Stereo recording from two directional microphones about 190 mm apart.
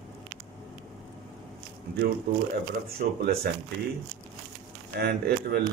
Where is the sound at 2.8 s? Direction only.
55° right (ahead or behind).